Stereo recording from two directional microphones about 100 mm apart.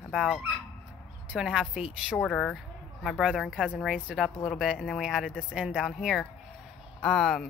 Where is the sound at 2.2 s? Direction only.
10° left (ahead or behind).